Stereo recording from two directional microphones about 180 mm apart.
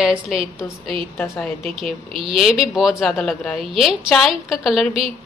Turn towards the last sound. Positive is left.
turn(degrees=0)  # may be behind; listen again after turning